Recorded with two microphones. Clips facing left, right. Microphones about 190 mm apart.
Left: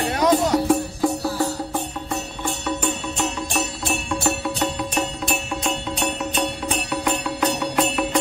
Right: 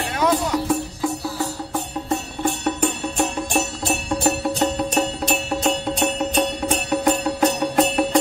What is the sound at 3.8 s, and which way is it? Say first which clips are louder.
Music: right 1 dB; 45° right (ahead or behind).